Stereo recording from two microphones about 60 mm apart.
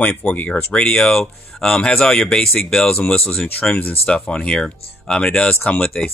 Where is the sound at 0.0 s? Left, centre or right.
Left.